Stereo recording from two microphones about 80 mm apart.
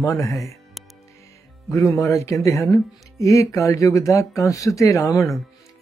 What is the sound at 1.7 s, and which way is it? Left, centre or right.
Speech, left.